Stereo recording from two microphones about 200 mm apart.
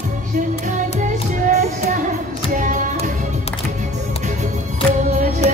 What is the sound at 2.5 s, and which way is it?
Music, 40° right (ahead or behind).